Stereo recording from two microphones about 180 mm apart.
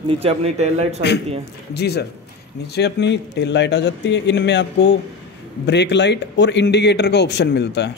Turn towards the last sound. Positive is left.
turn(degrees=70)  # may be behind; listen again after turning